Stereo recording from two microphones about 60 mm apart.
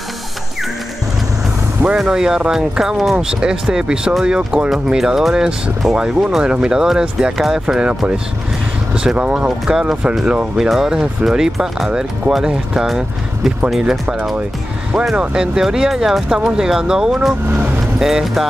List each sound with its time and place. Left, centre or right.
2.0 s speech: centre
4.9 s speech: centre
7.7 s speech: centre
15.1 s speech: centre
17.5 s speech: right
17.9 s speech: centre